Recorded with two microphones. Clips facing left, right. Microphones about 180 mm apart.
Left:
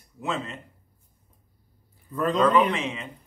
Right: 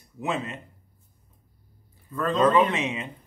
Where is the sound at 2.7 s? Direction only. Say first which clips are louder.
Right 1 dB; 20° right (ahead or behind).